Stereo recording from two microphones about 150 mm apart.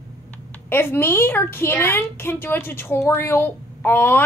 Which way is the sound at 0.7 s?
15° left (ahead or behind).